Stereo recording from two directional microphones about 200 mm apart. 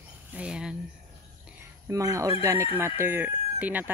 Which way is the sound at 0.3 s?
5° right (ahead or behind).